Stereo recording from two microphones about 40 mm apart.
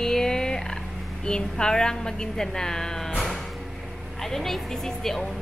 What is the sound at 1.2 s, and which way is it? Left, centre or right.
Speech, left.